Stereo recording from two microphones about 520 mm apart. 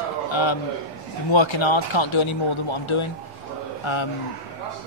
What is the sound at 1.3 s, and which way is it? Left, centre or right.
Speech, left.